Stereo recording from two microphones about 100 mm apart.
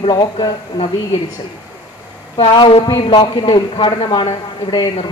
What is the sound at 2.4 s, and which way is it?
A woman's voice, 60° left (ahead or behind).